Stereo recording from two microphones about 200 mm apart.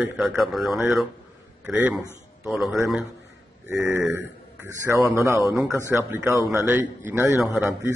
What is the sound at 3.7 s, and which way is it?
A man's voice, 10° right (ahead or behind).